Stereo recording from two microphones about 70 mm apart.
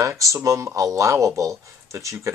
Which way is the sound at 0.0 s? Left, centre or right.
Right.